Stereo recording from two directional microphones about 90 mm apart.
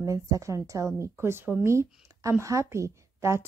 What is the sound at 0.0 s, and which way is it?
A woman's voice, 35° right (ahead or behind).